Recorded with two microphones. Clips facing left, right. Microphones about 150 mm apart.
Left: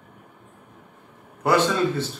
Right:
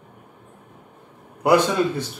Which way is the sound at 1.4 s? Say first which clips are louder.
Right 3 dB; 15° right (ahead or behind).